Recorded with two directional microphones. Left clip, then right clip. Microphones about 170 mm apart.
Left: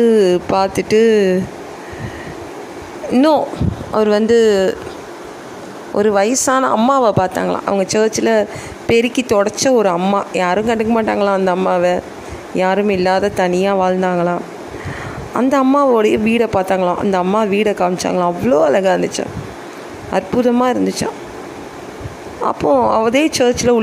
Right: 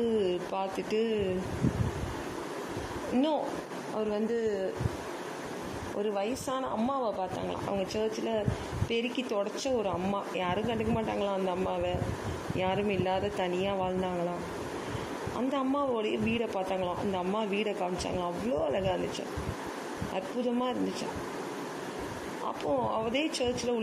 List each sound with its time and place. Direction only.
0.1 s a woman's voice: 20° left (ahead or behind)
3.1 s speech: 25° left (ahead or behind)
5.9 s a woman's voice: 30° left (ahead or behind)
15.3 s a woman's voice: 25° left (ahead or behind)
22.4 s a woman's voice: 30° left (ahead or behind)